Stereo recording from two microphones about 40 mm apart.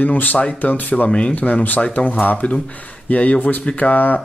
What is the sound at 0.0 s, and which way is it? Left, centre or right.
Speech, left.